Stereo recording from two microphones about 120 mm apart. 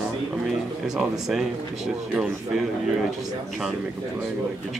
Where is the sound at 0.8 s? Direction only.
5° right (ahead or behind).